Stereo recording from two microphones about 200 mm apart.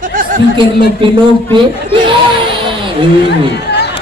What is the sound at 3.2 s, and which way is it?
Speech, 60° left (ahead or behind).